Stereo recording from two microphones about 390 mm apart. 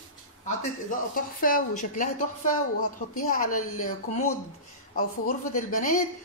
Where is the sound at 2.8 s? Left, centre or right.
Left.